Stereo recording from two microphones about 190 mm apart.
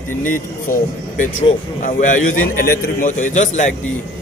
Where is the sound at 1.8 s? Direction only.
45° left (ahead or behind).